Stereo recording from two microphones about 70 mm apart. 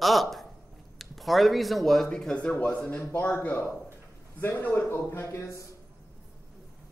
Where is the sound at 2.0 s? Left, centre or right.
Centre.